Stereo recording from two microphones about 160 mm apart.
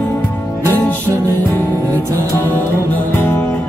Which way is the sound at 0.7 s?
10° left (ahead or behind).